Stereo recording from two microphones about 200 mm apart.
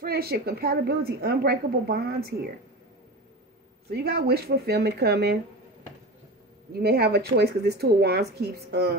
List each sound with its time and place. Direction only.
0.0 s a woman's voice: 50° right (ahead or behind)
3.9 s a woman's voice: 50° right (ahead or behind)
6.7 s a woman's voice: 50° right (ahead or behind)